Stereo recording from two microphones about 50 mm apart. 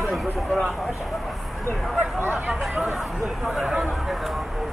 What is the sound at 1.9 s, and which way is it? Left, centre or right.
Speech, right.